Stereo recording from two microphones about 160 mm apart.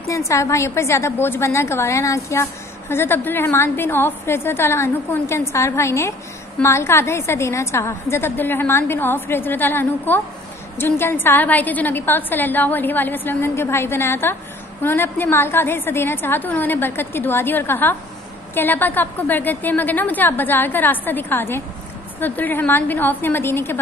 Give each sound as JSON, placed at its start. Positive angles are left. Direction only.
{"t": 0.1, "sound": "a woman's voice", "side_deg": 20}